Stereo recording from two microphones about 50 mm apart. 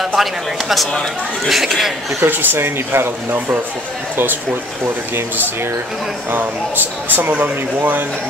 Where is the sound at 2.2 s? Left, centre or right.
Right.